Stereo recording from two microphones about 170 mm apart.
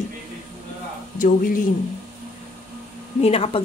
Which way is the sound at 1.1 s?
50° left (ahead or behind).